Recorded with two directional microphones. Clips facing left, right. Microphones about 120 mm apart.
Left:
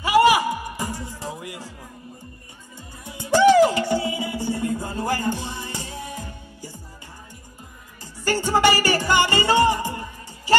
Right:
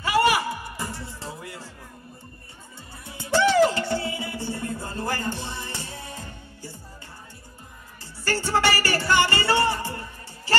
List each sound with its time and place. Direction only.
0.0 s music: 15° left (ahead or behind)
3.1 s music: 15° left (ahead or behind)
8.2 s music: 15° left (ahead or behind)